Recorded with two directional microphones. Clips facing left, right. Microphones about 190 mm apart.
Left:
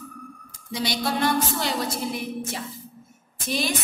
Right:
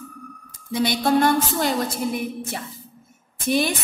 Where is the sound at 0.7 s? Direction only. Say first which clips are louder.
Right 7 dB; 55° right (ahead or behind).